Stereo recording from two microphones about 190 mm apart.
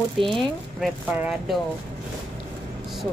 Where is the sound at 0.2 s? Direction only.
Centre (ahead or behind).